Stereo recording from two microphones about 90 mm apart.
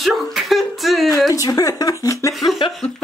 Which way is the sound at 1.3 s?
40° left (ahead or behind).